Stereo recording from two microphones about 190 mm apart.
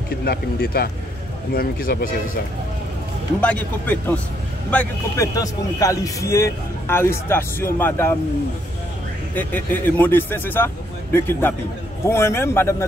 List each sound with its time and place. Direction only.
0.2 s speech: 55° left (ahead or behind)
3.3 s a man's voice: 5° left (ahead or behind)
9.3 s a man's voice: 10° left (ahead or behind)